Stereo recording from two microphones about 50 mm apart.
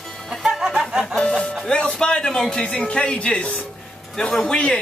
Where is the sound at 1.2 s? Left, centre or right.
Centre.